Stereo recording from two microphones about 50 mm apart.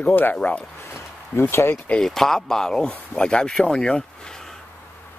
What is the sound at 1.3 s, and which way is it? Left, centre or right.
Speech, left.